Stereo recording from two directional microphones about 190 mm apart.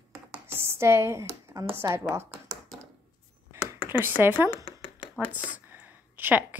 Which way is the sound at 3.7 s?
10° right (ahead or behind).